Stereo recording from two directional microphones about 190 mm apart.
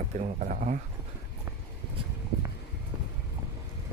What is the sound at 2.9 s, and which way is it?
Clip-clop, 5° right (ahead or behind).